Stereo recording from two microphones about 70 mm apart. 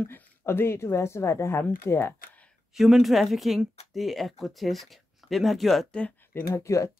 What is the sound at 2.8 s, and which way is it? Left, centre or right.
Speech, centre.